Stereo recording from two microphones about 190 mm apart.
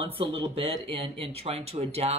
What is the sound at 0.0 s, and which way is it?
Speech, 25° right (ahead or behind).